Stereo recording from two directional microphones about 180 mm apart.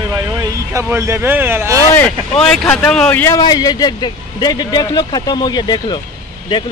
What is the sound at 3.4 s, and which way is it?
A man's voice, 20° left (ahead or behind).